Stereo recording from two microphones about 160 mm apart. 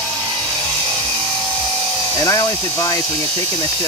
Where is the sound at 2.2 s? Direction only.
20° left (ahead or behind).